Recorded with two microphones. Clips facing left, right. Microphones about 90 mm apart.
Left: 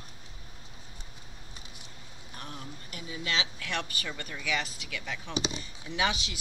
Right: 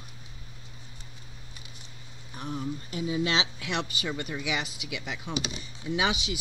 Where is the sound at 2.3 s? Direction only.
10° right (ahead or behind).